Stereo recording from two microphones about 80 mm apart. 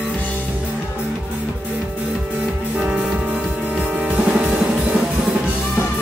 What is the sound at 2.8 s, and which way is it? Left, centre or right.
Music, centre.